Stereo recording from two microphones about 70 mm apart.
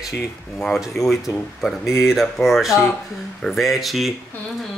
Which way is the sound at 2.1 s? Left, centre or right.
Centre.